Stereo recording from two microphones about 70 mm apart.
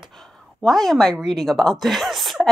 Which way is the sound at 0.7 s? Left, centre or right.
Centre.